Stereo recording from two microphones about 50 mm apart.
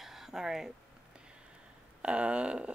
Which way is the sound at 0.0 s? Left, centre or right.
Centre.